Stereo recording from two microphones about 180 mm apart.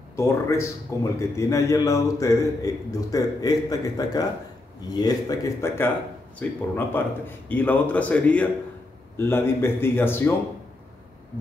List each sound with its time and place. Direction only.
0.1 s a man's voice: 15° left (ahead or behind)